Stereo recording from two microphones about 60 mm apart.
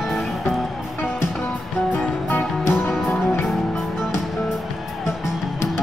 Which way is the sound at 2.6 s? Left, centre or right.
Left.